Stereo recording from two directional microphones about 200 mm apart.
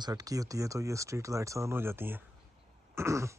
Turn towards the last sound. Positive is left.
turn(degrees=-15)  # may be behind; listen again after turning